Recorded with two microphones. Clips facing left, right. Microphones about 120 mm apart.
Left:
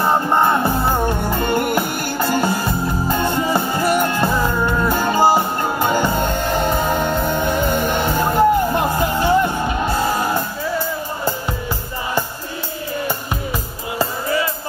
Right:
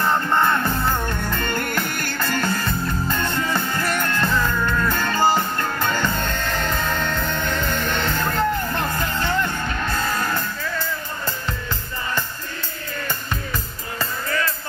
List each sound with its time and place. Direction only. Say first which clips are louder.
0.3 s music: left 4 dB; 15° left (ahead or behind)
0.7 s music: left 4 dB; 35° left (ahead or behind)
1.0 s music: left 6 dB; 15° left (ahead or behind)
13.9 s music: left 6 dB; 15° left (ahead or behind)